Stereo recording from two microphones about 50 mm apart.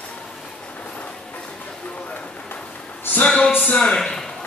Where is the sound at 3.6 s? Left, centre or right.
Left.